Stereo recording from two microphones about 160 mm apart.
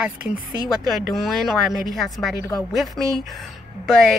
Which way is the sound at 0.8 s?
Centre (ahead or behind).